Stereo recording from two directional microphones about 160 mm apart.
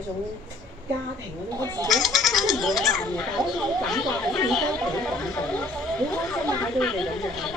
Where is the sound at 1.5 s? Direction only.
25° right (ahead or behind).